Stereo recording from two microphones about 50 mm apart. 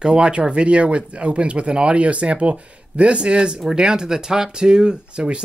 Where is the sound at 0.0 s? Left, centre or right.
Centre.